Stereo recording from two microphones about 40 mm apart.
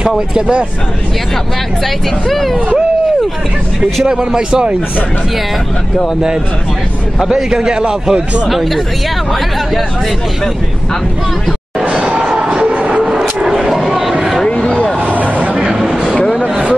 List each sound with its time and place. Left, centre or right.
0.3 s a man's voice: right
2.2 s speech: centre
4.0 s a man's voice: centre
7.3 s a man's voice: centre
8.5 s speech: centre
12.2 s music: right
13.5 s a sound: centre
14.5 s vehicle: left
15.0 s vehicle: right
15.5 s a sound: right